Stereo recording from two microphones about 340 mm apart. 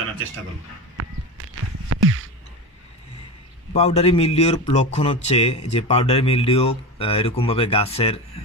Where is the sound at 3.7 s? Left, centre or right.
Centre.